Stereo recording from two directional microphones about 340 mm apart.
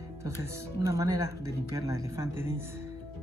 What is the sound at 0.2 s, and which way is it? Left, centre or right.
Speech, centre.